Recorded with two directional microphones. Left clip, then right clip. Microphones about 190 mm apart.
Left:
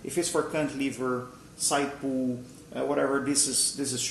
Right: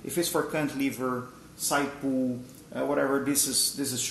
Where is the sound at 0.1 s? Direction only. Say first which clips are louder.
Even; 30° right (ahead or behind).